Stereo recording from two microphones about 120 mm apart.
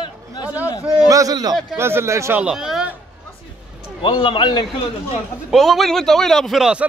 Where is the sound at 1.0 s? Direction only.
30° right (ahead or behind).